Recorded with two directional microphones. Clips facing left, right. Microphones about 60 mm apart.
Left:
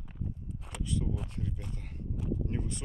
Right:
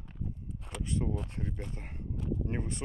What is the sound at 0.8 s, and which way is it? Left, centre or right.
Speech, right.